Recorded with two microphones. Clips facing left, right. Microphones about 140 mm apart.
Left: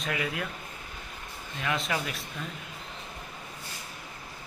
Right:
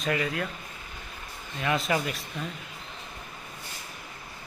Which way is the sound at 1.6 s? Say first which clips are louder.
Right 4 dB; centre (ahead or behind).